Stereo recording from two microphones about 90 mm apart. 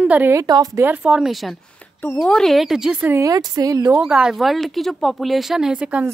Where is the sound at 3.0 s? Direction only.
30° right (ahead or behind).